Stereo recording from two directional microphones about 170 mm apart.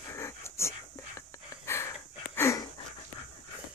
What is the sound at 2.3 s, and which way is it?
Dog, 15° left (ahead or behind).